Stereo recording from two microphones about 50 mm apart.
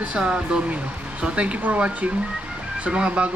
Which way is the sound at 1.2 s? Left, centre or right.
Right.